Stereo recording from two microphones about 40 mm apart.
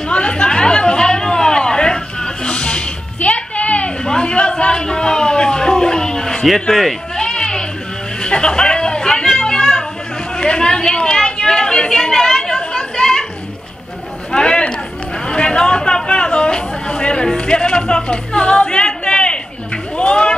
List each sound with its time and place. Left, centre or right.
0.1 s chatter: left
2.4 s music: left
3.2 s music: left
4.0 s a sound: left
6.7 s speech: centre
7.2 s a sound: centre
11.9 s chatter: centre
14.3 s chatter: left
20.0 s a sound: left